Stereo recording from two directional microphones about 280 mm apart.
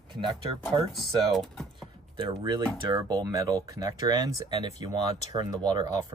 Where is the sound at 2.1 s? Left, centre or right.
Centre.